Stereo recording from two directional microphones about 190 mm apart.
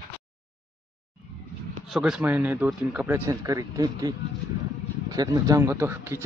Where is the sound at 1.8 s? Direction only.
Centre (ahead or behind).